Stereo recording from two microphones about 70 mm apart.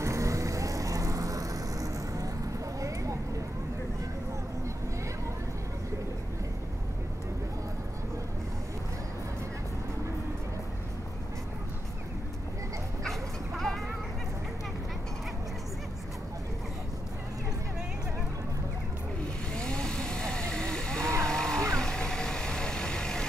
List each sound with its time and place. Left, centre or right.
0.0 s vehicle: right
2.8 s a sound: right
13.0 s bow-wow: centre
19.5 s vehicle: centre